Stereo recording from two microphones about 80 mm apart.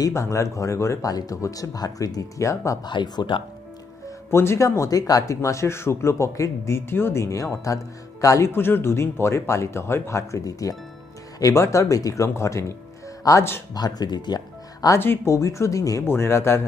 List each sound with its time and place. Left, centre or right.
0.1 s speech: left
2.8 s speech: left
4.3 s speech: left
13.7 s speech: left
15.0 s speech: left
15.3 s speech: left
16.1 s speech: left